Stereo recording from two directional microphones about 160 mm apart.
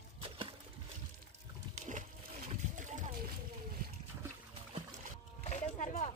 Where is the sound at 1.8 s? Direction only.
50° right (ahead or behind).